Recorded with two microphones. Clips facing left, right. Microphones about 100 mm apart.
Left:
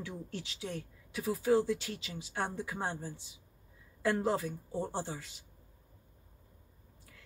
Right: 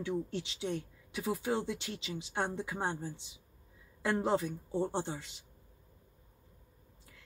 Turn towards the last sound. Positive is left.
turn(degrees=-25)  # may be behind; listen again after turning